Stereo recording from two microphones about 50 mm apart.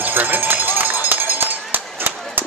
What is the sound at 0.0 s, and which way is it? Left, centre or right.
Run, right.